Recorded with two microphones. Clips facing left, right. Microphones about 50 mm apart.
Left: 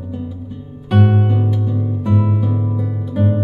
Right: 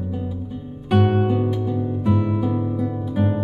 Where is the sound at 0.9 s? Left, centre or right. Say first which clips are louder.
Left 1 dB; centre.